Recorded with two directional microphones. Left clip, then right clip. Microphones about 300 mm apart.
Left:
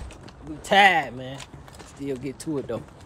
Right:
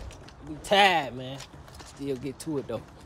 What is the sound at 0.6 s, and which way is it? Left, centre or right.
Speech, centre.